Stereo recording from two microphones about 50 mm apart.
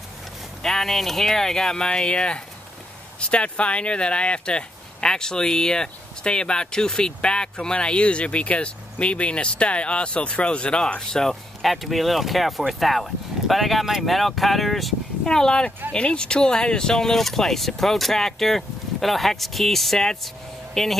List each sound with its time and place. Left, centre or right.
0.6 s speech: centre
11.6 s speech: centre